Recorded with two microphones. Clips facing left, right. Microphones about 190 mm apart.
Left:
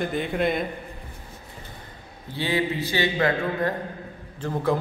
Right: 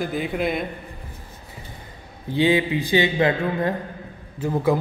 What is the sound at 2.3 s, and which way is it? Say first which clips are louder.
A man's voice: right 6 dB; 15° right (ahead or behind).